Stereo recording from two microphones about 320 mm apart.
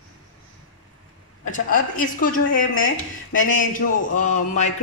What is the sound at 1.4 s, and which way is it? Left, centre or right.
Speech, left.